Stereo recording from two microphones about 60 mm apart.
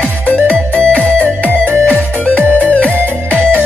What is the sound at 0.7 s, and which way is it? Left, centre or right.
Music, left.